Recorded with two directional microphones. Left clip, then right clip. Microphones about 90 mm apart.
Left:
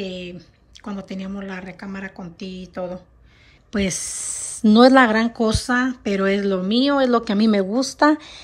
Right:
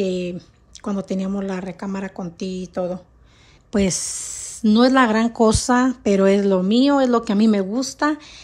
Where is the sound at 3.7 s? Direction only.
50° right (ahead or behind).